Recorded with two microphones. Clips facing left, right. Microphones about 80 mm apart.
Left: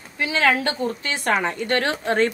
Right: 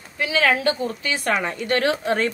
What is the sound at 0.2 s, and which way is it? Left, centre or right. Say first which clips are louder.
A woman's voice: even; left.